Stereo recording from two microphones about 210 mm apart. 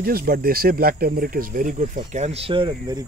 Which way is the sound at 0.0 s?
45° right (ahead or behind).